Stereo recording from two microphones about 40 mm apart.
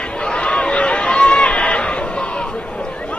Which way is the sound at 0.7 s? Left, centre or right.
Left.